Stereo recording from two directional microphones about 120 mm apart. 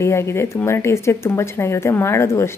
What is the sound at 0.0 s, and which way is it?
Speech, 25° left (ahead or behind).